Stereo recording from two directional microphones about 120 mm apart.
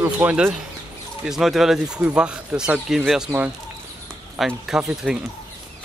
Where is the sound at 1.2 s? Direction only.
Centre (ahead or behind).